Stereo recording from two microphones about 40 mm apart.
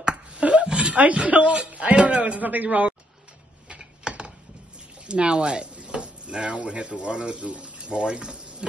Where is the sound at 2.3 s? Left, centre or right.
Right.